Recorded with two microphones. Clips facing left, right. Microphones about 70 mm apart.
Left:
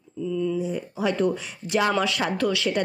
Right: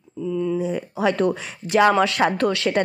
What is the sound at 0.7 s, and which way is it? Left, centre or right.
A woman's voice, right.